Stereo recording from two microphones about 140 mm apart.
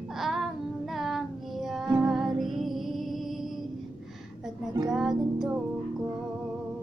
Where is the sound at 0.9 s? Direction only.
Centre (ahead or behind).